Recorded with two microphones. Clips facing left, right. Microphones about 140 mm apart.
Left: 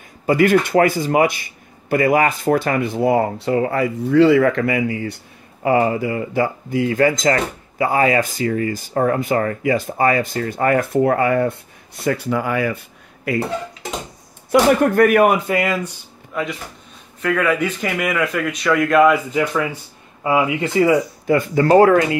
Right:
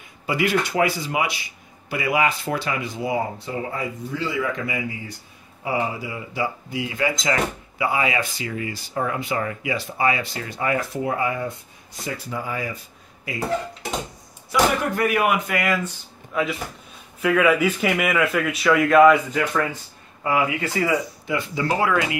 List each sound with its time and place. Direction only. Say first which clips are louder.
0.3 s speech: left 8 dB; 50° left (ahead or behind); by 5.1 s 75° left (ahead or behind)
5.6 s speech: left 9 dB; 65° left (ahead or behind)
14.5 s speech: left 7 dB; 50° left (ahead or behind)
15.3 s speech: left 4 dB; 30° left (ahead or behind)
16.3 s a man's voice: even; centre (ahead or behind); by 21.0 s 25° left (ahead or behind)
21.3 s speech: left 10 dB; 50° left (ahead or behind)